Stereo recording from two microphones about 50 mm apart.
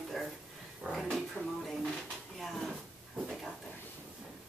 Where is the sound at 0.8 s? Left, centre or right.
Right.